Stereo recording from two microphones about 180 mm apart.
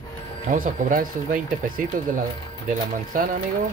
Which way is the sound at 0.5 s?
50° right (ahead or behind).